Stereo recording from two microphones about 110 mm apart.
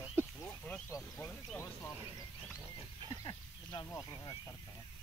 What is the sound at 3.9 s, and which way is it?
Speech, 35° left (ahead or behind).